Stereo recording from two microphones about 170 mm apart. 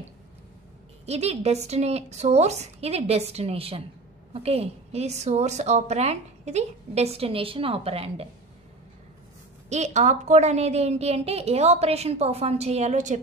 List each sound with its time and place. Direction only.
1.0 s a woman's voice: 40° right (ahead or behind)
9.7 s a woman's voice: 40° right (ahead or behind)